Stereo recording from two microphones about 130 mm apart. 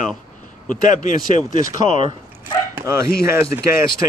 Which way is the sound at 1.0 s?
70° left (ahead or behind).